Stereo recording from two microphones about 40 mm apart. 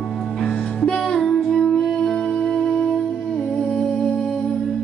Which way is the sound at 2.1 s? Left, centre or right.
Left.